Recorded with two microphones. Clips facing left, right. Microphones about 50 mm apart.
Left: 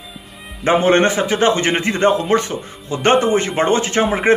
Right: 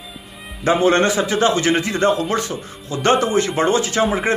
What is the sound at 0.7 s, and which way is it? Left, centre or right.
A man's voice, left.